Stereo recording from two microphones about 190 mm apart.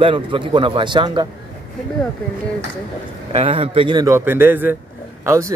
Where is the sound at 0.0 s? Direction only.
25° right (ahead or behind).